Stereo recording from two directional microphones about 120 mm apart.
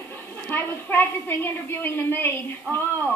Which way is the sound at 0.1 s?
15° left (ahead or behind).